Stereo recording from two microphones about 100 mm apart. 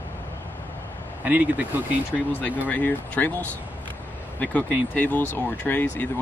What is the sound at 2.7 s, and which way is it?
Speech, 15° left (ahead or behind).